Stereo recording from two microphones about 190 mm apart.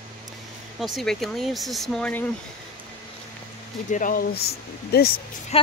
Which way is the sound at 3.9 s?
45° left (ahead or behind).